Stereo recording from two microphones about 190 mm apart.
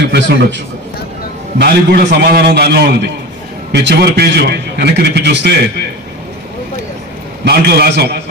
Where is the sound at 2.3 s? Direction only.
60° right (ahead or behind).